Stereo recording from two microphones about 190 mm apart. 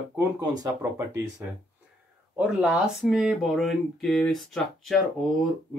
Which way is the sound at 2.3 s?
5° right (ahead or behind).